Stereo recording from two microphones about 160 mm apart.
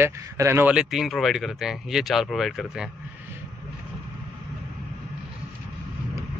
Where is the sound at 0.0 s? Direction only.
15° right (ahead or behind).